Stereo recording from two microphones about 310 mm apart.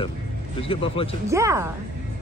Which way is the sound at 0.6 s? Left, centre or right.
Centre.